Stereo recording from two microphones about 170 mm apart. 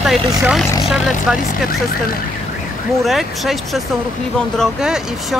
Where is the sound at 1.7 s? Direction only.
60° left (ahead or behind).